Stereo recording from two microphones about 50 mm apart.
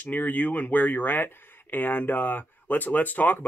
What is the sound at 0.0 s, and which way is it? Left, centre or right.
Speech, left.